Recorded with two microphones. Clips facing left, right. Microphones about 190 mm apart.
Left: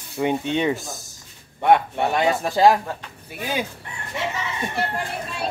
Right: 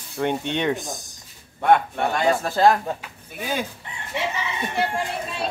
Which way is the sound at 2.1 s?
20° left (ahead or behind).